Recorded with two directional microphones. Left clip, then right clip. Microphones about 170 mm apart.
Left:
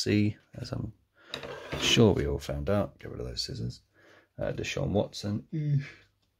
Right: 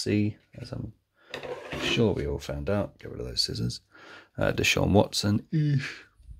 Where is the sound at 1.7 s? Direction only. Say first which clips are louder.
Left 3 dB; 20° left (ahead or behind).